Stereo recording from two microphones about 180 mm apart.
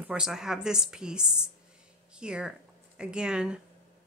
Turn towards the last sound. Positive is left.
turn(degrees=-5)  # may be behind; listen again after turning